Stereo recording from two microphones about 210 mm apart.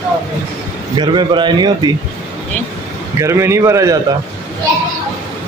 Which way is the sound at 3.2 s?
15° right (ahead or behind).